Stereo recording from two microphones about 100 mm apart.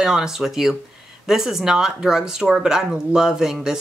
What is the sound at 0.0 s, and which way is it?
Speech, 5° right (ahead or behind).